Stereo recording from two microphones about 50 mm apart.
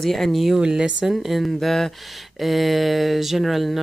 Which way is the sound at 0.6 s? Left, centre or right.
Centre.